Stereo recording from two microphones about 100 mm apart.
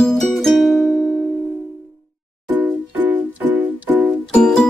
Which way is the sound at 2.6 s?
20° right (ahead or behind).